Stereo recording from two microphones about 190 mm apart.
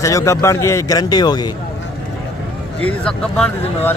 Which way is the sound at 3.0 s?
5° left (ahead or behind).